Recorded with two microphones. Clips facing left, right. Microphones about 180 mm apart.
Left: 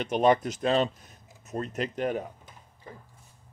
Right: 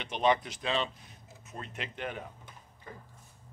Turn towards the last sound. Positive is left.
turn(degrees=40)  # may be behind; listen again after turning